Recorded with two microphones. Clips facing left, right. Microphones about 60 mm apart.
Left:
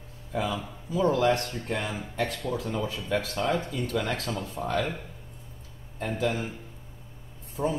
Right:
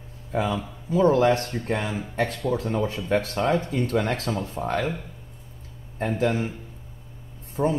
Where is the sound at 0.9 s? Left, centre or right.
Right.